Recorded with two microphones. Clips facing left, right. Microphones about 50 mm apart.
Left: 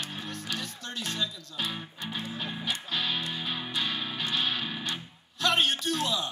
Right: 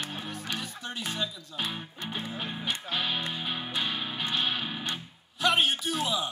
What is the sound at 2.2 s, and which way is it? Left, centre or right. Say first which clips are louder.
Music: even; right.